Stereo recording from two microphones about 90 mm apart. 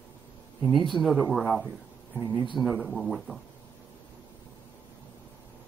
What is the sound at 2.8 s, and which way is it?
Speech, centre (ahead or behind).